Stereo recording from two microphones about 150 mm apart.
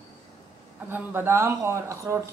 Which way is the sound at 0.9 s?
15° right (ahead or behind).